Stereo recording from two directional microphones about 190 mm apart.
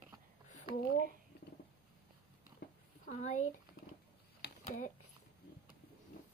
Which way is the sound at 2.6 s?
50° left (ahead or behind).